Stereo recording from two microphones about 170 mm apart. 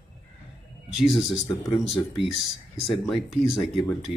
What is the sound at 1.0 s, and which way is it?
Speech, centre (ahead or behind).